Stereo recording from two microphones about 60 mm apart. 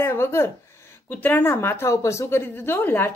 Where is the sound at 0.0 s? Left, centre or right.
Left.